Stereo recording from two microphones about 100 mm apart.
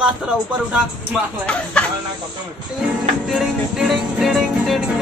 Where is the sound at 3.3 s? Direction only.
5° right (ahead or behind).